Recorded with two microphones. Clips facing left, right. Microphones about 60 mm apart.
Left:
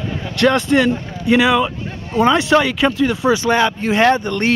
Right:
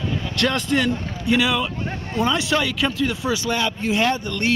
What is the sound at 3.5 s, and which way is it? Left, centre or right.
Speech, left.